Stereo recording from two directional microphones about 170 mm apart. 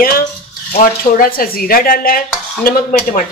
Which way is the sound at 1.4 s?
60° left (ahead or behind).